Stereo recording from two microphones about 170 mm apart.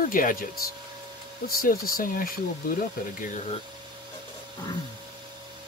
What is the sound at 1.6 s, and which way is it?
Speech, 60° left (ahead or behind).